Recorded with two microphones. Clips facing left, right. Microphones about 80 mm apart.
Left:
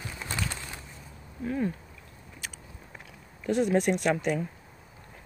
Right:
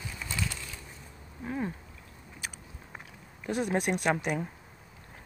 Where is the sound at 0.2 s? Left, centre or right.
Left.